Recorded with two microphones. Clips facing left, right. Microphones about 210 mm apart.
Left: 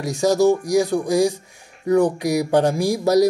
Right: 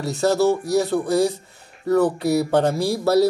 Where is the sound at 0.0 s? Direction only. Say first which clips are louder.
Left 2 dB; 15° left (ahead or behind).